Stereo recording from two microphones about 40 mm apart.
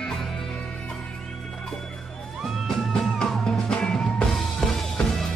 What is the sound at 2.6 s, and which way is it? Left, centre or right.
Music, centre.